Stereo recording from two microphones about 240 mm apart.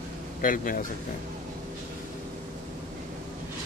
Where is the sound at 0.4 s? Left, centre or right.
Left.